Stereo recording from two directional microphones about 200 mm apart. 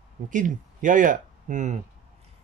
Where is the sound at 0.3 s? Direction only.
40° right (ahead or behind).